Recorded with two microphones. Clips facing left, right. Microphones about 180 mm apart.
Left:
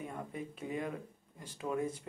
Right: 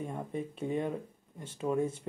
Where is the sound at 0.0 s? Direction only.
25° right (ahead or behind).